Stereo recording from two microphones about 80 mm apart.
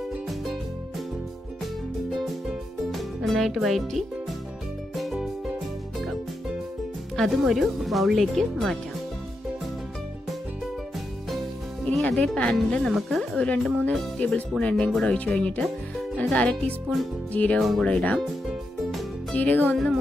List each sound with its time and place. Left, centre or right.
2.9 s speech: centre
4.9 s music: centre
7.2 s speech: centre
11.8 s speech: centre
17.6 s speech: centre
17.8 s speech: centre
18.2 s music: centre
19.3 s speech: left